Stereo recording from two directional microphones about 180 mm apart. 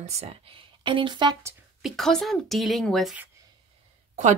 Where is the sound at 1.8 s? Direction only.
Centre (ahead or behind).